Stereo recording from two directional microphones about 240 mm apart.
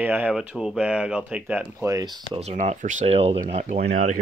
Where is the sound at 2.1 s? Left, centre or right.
Right.